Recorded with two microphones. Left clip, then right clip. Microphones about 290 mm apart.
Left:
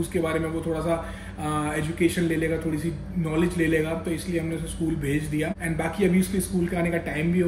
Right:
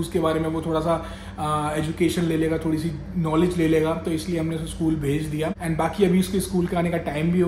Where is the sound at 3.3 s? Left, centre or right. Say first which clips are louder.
Right 3 dB; centre.